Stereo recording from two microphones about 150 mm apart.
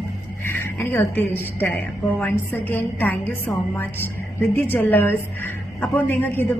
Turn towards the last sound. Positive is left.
turn(degrees=10)  # may be behind; listen again after turning